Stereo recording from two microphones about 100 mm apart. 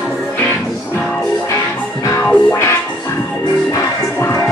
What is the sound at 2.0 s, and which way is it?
Music, 25° left (ahead or behind).